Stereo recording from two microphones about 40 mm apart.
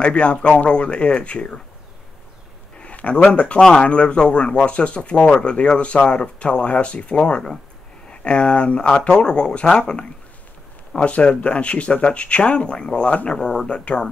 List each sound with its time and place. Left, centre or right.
0.0 s speech: left
2.8 s speech: left
3.8 s speech: left
11.1 s speech: left
13.1 s speech: left
13.4 s speech: centre